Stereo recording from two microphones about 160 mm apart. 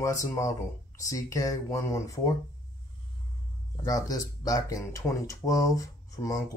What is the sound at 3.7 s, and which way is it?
Speech, 20° left (ahead or behind).